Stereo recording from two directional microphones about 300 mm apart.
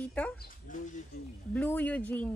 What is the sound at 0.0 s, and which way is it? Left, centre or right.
Speech, centre.